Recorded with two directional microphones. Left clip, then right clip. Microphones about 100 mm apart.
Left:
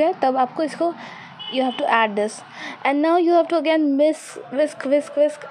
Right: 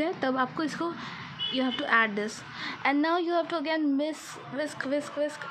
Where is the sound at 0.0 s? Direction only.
65° left (ahead or behind).